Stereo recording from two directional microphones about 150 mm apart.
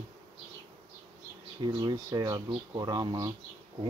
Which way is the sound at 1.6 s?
25° right (ahead or behind).